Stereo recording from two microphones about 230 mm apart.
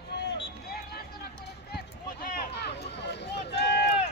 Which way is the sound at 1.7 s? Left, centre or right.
Left.